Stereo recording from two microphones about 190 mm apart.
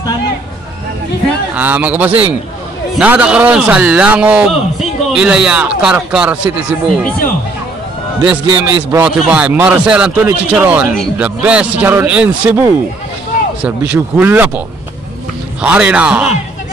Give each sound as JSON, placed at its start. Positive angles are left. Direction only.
{"t": 1.5, "sound": "speech", "side_deg": -10}
{"t": 8.2, "sound": "a man's voice", "side_deg": -25}
{"t": 9.0, "sound": "speech", "side_deg": -5}
{"t": 13.9, "sound": "speech", "side_deg": -10}
{"t": 15.6, "sound": "speech", "side_deg": -5}